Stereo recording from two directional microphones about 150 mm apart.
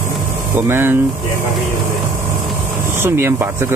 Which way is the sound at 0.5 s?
15° right (ahead or behind).